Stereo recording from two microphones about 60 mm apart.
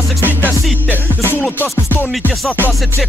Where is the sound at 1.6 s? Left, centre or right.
Left.